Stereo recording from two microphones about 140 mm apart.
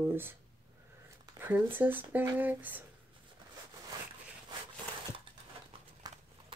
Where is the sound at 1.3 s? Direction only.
15° right (ahead or behind).